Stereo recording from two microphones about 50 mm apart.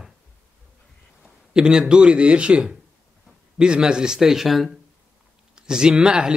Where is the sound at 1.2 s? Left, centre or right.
Centre.